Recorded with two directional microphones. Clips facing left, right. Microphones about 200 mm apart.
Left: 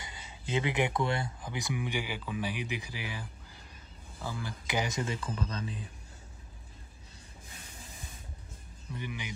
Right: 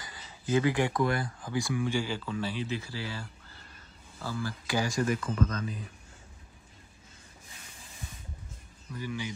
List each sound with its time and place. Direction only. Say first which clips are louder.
0.0 s speech: right 3 dB; 25° left (ahead or behind)
8.9 s speech: right 4 dB; 20° left (ahead or behind)